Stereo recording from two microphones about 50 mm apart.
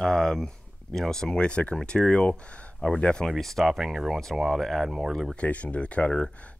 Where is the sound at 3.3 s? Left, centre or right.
Centre.